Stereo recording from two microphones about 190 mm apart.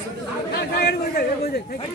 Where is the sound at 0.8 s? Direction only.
55° left (ahead or behind).